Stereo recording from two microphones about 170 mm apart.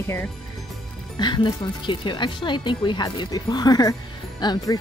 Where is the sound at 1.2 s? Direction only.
25° left (ahead or behind).